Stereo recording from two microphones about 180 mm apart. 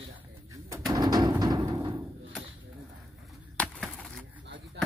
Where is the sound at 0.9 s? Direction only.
20° right (ahead or behind).